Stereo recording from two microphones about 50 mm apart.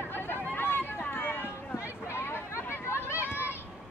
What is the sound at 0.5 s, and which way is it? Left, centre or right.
Run, left.